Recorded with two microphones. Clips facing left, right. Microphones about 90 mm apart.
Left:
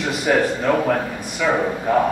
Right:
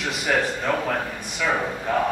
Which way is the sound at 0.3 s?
10° left (ahead or behind).